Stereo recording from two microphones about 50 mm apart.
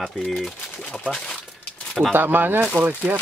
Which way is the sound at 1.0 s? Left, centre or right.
Centre.